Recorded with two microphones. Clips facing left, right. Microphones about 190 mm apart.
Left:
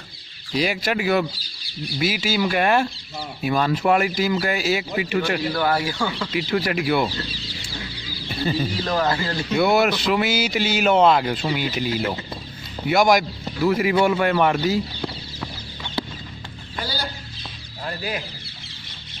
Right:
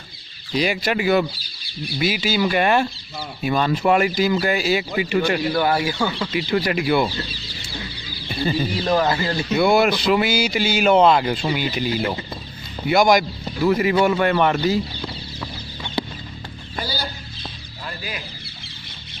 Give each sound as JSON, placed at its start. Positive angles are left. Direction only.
{"t": 0.6, "sound": "speech", "side_deg": 0}
{"t": 5.5, "sound": "speech", "side_deg": -15}
{"t": 6.3, "sound": "speech", "side_deg": 0}
{"t": 8.8, "sound": "speech", "side_deg": -15}
{"t": 16.8, "sound": "chicken", "side_deg": -5}
{"t": 17.8, "sound": "a sound", "side_deg": 55}